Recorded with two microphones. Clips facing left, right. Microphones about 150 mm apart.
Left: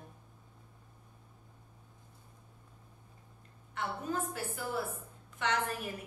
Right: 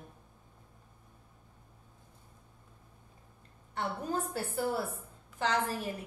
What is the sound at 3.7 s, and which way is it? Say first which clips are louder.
A woman's voice: right 2 dB; 35° right (ahead or behind).